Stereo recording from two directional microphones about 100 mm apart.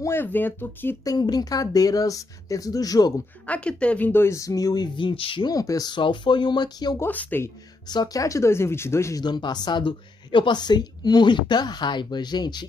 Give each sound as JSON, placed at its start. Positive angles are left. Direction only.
{"t": 0.0, "sound": "speech", "side_deg": 20}
{"t": 1.0, "sound": "speech", "side_deg": 40}
{"t": 3.4, "sound": "speech", "side_deg": 15}
{"t": 5.5, "sound": "a woman's voice", "side_deg": 35}
{"t": 7.0, "sound": "speech", "side_deg": 15}
{"t": 7.9, "sound": "speech", "side_deg": 40}
{"t": 9.2, "sound": "a woman's voice", "side_deg": 45}